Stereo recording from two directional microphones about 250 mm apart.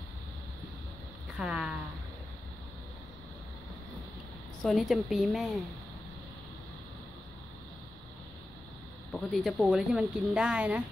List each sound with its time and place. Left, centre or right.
1.4 s speech: centre
4.6 s speech: centre
9.1 s speech: centre